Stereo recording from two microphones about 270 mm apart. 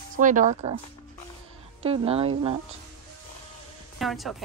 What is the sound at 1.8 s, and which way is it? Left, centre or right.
Speech, right.